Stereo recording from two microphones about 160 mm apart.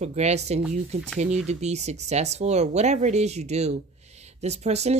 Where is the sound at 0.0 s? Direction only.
45° right (ahead or behind).